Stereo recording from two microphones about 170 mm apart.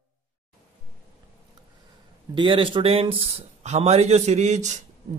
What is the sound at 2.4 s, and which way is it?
Speech, 30° right (ahead or behind).